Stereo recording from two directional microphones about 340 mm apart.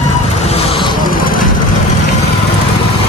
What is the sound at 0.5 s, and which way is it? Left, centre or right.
Vehicle, centre.